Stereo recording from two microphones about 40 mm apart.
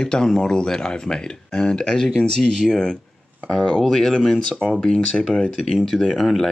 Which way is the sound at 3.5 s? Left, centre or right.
Centre.